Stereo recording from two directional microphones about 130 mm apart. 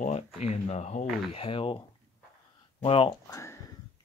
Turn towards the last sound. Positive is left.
turn(degrees=20)  # may be behind; listen again after turning